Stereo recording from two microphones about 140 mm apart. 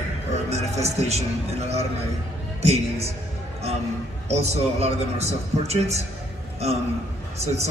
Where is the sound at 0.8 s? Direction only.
50° right (ahead or behind).